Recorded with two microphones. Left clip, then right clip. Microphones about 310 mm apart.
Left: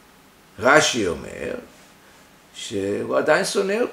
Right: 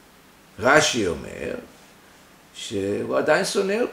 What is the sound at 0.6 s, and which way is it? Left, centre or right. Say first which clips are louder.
Speech: left 2 dB; centre.